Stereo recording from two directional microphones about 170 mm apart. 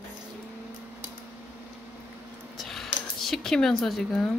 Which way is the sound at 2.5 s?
Centre (ahead or behind).